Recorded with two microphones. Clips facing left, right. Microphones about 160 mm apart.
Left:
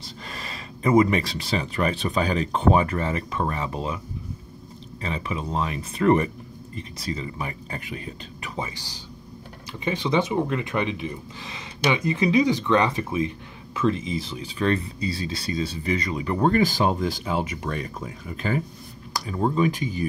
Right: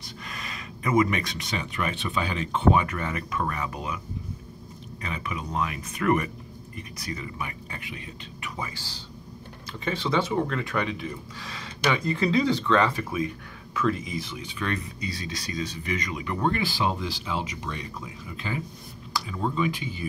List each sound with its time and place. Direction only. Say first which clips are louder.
0.0 s speech: left 2 dB; 30° left (ahead or behind)
5.0 s speech: left 4 dB; 30° left (ahead or behind)
8.5 s speech: left 5 dB; 20° left (ahead or behind); by 20.1 s 45° left (ahead or behind)